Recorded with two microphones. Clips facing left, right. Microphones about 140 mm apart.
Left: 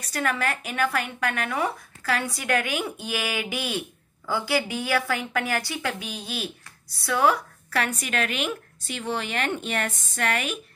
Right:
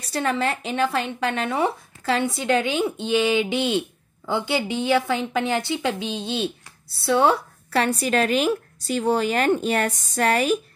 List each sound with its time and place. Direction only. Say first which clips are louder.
0.0 s a woman's voice: right 3 dB; 25° right (ahead or behind)